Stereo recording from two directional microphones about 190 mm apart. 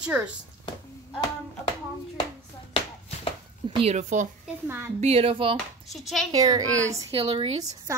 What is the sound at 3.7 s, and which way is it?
Speech, 35° right (ahead or behind).